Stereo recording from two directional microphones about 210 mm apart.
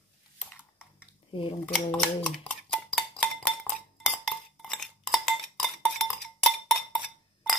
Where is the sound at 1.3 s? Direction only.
25° left (ahead or behind).